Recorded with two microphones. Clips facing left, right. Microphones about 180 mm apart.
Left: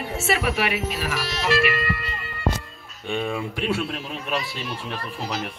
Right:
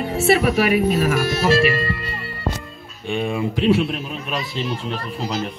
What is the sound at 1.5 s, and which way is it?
Music, 30° right (ahead or behind).